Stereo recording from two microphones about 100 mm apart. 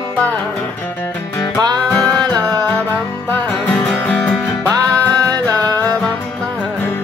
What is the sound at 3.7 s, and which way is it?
Music, 10° left (ahead or behind).